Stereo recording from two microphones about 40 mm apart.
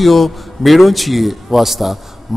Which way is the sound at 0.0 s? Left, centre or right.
Centre.